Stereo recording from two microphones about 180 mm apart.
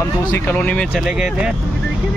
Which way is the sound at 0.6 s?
5° left (ahead or behind).